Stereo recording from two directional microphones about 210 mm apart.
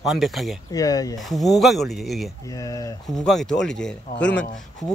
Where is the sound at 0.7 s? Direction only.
15° left (ahead or behind).